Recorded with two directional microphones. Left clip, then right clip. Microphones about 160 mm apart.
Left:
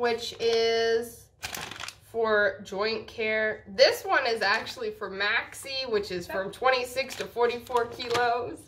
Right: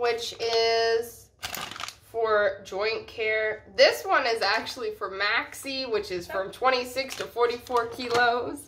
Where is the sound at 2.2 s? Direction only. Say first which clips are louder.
Right 1 dB; 10° right (ahead or behind).